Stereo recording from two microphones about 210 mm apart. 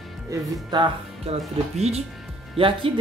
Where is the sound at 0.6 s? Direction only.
20° right (ahead or behind).